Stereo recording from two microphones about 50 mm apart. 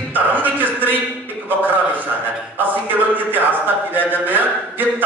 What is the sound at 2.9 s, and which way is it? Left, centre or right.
A man's voice, right.